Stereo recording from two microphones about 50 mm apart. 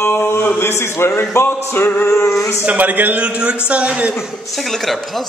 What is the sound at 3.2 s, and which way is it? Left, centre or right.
Speech, right.